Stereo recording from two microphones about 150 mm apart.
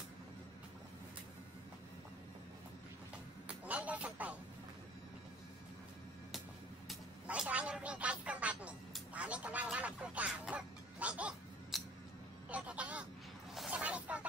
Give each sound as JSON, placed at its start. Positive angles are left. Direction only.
{"t": 3.4, "sound": "a man's voice", "side_deg": -10}
{"t": 6.9, "sound": "speech", "side_deg": -5}
{"t": 13.6, "sound": "snake", "side_deg": -5}